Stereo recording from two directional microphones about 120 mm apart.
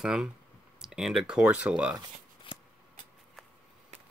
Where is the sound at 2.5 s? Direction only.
45° left (ahead or behind).